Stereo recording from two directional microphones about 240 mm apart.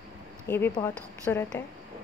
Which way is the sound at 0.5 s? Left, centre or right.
Centre.